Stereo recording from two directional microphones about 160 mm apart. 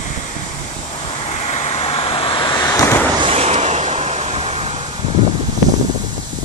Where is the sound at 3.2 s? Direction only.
35° right (ahead or behind).